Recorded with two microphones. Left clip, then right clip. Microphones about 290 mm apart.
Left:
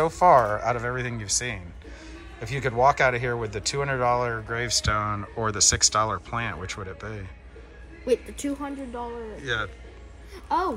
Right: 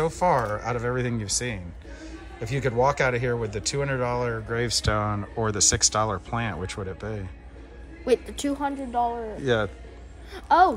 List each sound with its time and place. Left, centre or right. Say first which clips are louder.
0.0 s speech: left 5 dB; centre
8.1 s a woman's voice: right 2 dB; right
10.3 s a sound: right 7 dB; right